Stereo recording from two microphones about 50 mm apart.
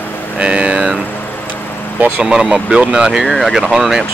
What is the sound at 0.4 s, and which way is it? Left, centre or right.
Vehicle, right.